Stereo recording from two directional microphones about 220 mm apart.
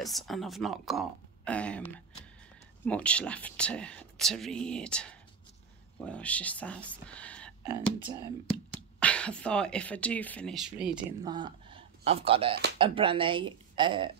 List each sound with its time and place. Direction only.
0.0 s speech: centre (ahead or behind)
9.0 s speech: 5° left (ahead or behind)
11.2 s speech: 20° right (ahead or behind)